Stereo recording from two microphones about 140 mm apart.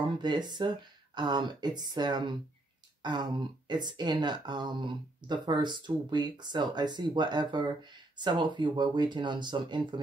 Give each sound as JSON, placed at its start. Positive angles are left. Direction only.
{"t": 0.2, "sound": "speech", "side_deg": -30}